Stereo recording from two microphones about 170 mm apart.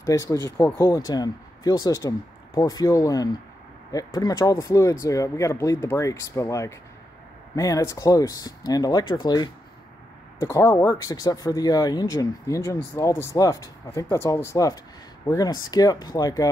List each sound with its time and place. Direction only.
0.0 s speech: 20° left (ahead or behind)